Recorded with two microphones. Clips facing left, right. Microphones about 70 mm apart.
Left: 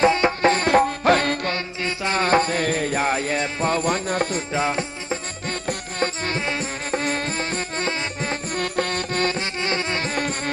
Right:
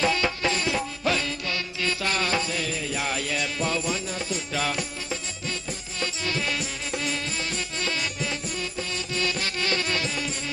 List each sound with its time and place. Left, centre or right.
0.0 s music: left
1.5 s music: left
2.2 s music: left
4.5 s music: left
5.5 s music: left
8.5 s music: left
9.3 s music: left
10.0 s music: left